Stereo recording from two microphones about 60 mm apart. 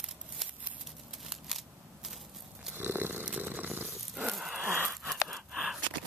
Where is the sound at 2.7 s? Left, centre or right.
Right.